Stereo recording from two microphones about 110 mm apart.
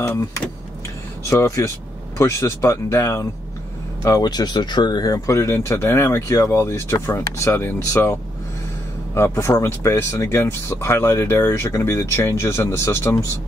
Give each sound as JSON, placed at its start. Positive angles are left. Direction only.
{"t": 1.3, "sound": "speech", "side_deg": 25}